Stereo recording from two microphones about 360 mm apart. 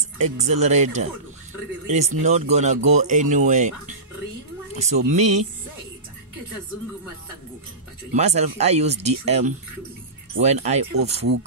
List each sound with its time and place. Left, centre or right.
0.2 s speech: centre
8.1 s speech: centre